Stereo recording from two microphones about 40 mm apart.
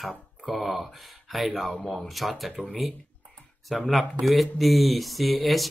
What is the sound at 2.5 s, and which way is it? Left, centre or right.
Speech, centre.